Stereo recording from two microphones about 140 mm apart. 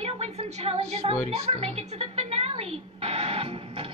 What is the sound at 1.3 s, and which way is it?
Music, 45° right (ahead or behind).